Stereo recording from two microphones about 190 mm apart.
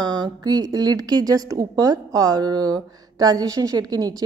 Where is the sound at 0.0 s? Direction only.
20° right (ahead or behind).